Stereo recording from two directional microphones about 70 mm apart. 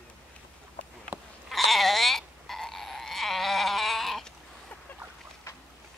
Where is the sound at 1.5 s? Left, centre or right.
Centre.